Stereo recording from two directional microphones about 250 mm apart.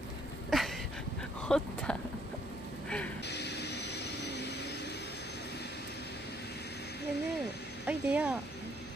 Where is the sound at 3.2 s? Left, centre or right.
Left.